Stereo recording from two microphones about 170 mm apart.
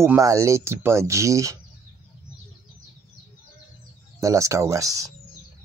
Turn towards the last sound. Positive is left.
turn(degrees=-20)  # may be behind; listen again after turning